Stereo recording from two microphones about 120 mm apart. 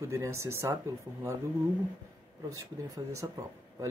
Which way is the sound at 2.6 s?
30° right (ahead or behind).